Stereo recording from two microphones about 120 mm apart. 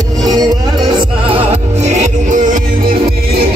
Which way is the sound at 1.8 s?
85° right.